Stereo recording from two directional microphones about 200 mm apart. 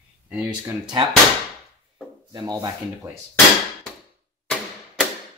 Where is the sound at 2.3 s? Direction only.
20° right (ahead or behind).